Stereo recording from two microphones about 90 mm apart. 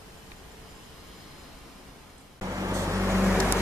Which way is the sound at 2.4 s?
35° right (ahead or behind).